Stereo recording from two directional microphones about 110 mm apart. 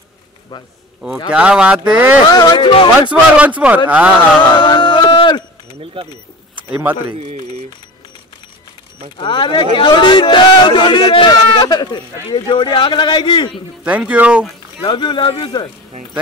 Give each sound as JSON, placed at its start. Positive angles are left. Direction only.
{"t": 1.3, "sound": "speech", "side_deg": -10}
{"t": 2.2, "sound": "a man's voice", "side_deg": 40}
{"t": 3.1, "sound": "speech", "side_deg": -10}
{"t": 4.6, "sound": "a sound", "side_deg": 45}
{"t": 7.2, "sound": "speech", "side_deg": -60}
{"t": 9.2, "sound": "a man's voice", "side_deg": 45}
{"t": 13.8, "sound": "speech", "side_deg": -10}
{"t": 14.8, "sound": "a man's voice", "side_deg": 45}